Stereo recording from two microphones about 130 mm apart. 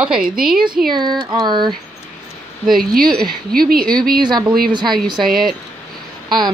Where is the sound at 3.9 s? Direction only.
30° right (ahead or behind).